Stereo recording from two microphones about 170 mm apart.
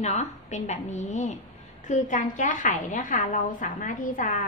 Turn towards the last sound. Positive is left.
turn(degrees=45)  # may be behind; listen again after turning